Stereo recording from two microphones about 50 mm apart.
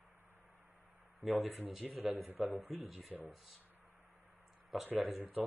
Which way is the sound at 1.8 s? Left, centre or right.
Right.